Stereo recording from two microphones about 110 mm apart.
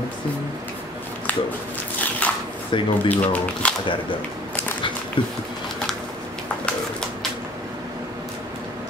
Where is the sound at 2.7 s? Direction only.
50° left (ahead or behind).